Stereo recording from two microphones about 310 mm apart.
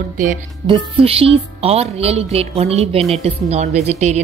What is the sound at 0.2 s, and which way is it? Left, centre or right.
Speech, right.